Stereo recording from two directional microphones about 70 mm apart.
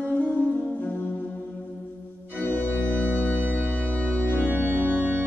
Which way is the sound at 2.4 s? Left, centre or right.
Left.